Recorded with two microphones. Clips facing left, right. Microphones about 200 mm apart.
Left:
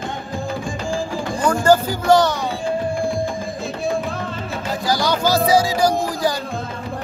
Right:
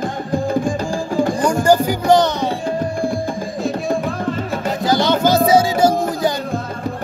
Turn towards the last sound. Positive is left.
turn(degrees=-25)  # may be behind; listen again after turning